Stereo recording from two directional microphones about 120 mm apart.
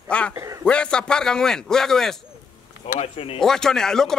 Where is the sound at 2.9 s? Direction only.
55° left (ahead or behind).